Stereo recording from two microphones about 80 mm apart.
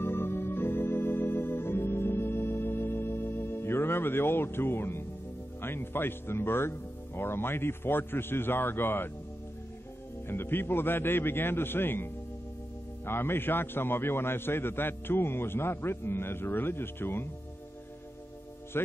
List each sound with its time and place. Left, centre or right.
0.0 s organ: left
5.6 s a man's voice: left
10.2 s a man's voice: left